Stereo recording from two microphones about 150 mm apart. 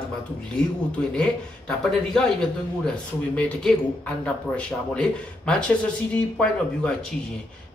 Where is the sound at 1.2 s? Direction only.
5° left (ahead or behind).